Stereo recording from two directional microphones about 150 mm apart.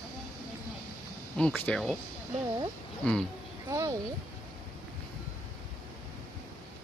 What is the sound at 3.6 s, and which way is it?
Speech, 20° right (ahead or behind).